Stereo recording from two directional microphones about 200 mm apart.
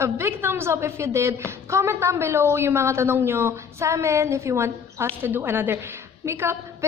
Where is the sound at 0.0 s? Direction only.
15° right (ahead or behind).